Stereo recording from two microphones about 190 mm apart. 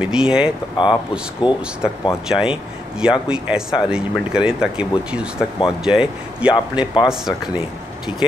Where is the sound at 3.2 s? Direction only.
5° right (ahead or behind).